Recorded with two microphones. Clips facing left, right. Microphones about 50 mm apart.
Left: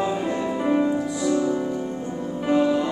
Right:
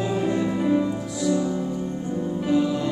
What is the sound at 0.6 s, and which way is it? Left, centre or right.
Music, left.